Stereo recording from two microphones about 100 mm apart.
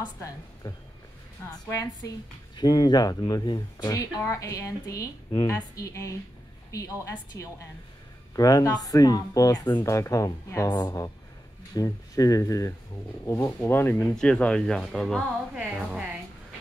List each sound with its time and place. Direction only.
0.0 s a woman's voice: 40° left (ahead or behind)
3.9 s a woman's voice: 35° left (ahead or behind)
9.8 s a woman's voice: 30° left (ahead or behind); by 15.2 s centre (ahead or behind)
15.5 s a woman's voice: 10° right (ahead or behind)